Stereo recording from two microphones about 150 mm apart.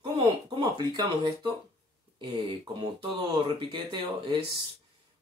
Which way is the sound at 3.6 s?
30° right (ahead or behind).